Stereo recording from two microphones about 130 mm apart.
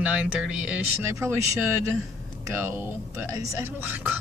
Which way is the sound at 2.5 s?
20° right (ahead or behind).